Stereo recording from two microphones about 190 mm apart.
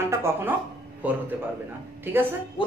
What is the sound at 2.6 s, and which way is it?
Music, 25° left (ahead or behind).